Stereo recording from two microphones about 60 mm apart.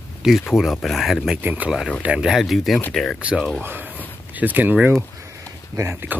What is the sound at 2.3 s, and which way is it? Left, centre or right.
Speech, centre.